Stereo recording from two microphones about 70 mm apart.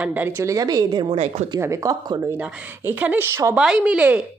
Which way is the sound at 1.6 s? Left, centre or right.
Right.